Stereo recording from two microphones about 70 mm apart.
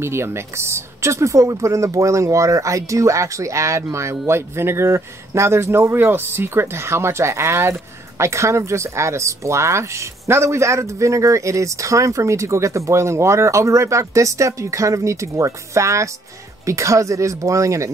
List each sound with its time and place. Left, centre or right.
0.0 s speech: right